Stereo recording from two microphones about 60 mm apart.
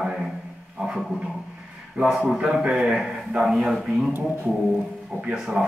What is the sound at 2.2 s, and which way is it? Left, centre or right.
A man's voice, centre.